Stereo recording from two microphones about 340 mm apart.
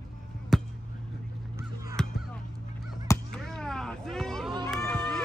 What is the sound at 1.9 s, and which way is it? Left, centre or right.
Music, centre.